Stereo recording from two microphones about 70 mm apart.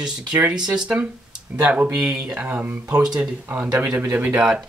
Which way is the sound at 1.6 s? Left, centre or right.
Right.